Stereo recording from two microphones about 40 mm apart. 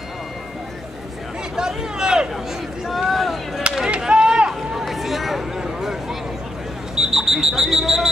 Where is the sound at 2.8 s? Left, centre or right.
Centre.